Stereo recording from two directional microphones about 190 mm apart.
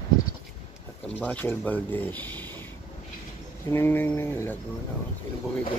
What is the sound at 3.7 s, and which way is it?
Speech, 10° left (ahead or behind).